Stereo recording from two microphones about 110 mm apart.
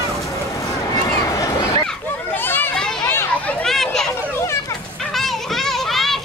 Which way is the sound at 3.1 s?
15° left (ahead or behind).